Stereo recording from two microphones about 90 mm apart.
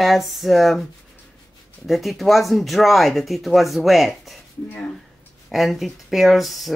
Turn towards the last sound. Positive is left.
turn(degrees=0)  # may be behind; listen again after turning